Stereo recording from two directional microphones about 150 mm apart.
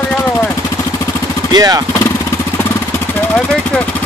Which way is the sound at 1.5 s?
25° right (ahead or behind).